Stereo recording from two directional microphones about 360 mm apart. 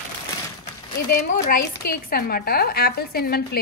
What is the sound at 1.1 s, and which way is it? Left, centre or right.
A woman's voice, left.